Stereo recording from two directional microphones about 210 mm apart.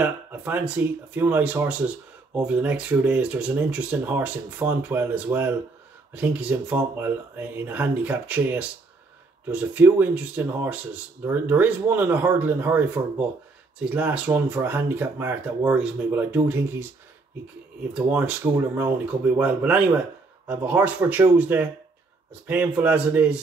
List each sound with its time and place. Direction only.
0.0 s speech: 10° right (ahead or behind)
17.9 s speech: 5° right (ahead or behind)